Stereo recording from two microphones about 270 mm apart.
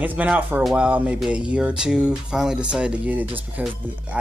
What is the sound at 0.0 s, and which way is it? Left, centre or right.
Speech, centre.